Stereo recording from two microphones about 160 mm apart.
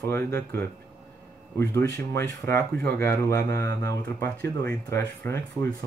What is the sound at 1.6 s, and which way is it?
Speech, 15° left (ahead or behind).